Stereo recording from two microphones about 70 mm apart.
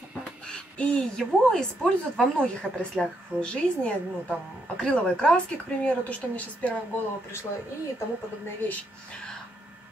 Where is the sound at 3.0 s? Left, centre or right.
Centre.